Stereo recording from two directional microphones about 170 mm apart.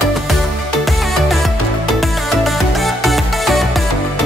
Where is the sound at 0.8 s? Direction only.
Centre (ahead or behind).